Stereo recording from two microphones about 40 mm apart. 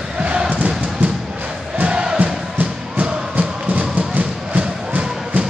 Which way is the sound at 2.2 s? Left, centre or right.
Right.